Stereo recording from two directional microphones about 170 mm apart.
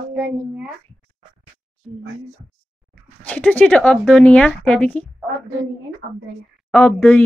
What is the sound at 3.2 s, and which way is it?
A woman's voice, 10° left (ahead or behind).